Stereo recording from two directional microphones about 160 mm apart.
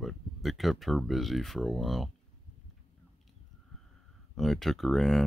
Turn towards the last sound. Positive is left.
turn(degrees=0)  # may be behind; listen again after turning